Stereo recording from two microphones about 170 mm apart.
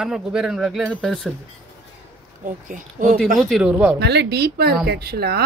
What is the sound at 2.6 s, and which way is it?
Speech, 50° right (ahead or behind).